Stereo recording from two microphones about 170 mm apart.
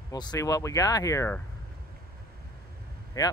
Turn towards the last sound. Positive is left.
turn(degrees=20)  # may be behind; listen again after turning